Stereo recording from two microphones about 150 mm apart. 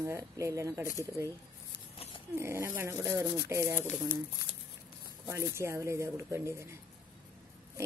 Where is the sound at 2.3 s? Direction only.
15° right (ahead or behind).